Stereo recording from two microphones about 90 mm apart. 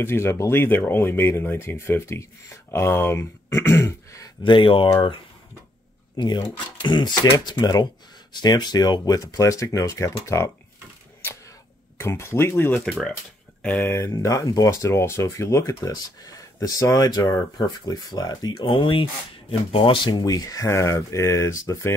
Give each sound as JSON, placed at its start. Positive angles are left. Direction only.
{"t": 0.0, "sound": "speech", "side_deg": 30}
{"t": 4.4, "sound": "speech", "side_deg": 65}
{"t": 6.1, "sound": "speech", "side_deg": 55}
{"t": 12.0, "sound": "speech", "side_deg": 30}
{"t": 13.6, "sound": "a sound", "side_deg": 15}
{"t": 13.8, "sound": "speech", "side_deg": 35}
{"t": 19.9, "sound": "speech", "side_deg": 55}